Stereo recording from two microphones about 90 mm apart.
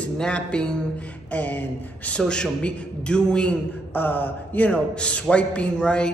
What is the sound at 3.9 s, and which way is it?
A man's voice, 20° left (ahead or behind).